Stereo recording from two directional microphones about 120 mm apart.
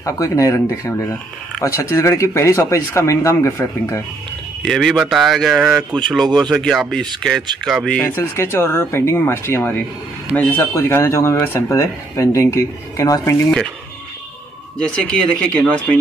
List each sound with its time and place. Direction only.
0.0 s speech: 30° left (ahead or behind)
4.6 s speech: 5° left (ahead or behind)
8.2 s speech: 20° left (ahead or behind)
14.8 s speech: 10° left (ahead or behind)